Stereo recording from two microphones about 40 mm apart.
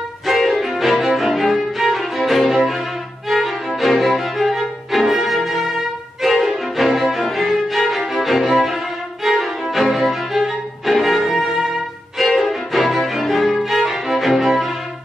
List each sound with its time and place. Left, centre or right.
0.3 s music: centre
10.3 s violin: centre
12.4 s music: centre